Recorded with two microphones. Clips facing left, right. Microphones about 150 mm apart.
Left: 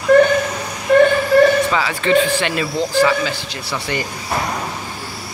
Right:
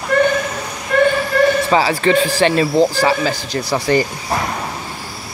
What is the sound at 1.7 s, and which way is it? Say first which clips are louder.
Speech: right 3 dB; 35° right (ahead or behind).